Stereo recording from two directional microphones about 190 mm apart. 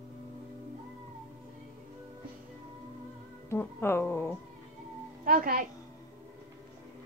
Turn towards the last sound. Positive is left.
turn(degrees=-50)  # may be behind; listen again after turning